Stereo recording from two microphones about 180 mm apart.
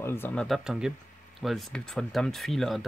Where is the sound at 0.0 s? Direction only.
15° left (ahead or behind).